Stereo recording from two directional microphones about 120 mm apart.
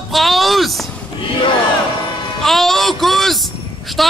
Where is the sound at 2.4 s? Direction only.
Centre (ahead or behind).